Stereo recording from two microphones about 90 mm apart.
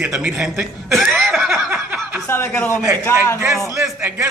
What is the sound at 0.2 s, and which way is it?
Speech, 20° right (ahead or behind).